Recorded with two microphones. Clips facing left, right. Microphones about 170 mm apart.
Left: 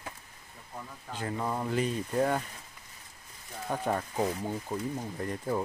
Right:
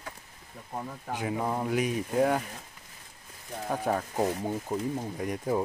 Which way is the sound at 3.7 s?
5° right (ahead or behind).